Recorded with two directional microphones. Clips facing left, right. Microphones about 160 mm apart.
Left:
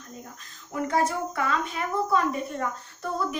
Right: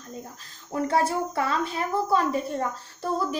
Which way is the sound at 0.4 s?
30° right (ahead or behind).